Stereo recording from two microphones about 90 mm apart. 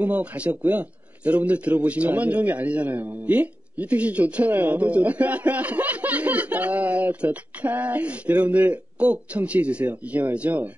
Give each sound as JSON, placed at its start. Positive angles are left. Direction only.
{"t": 0.0, "sound": "a man's voice", "side_deg": -15}